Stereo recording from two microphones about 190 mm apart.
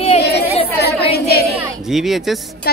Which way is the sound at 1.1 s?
55° left (ahead or behind).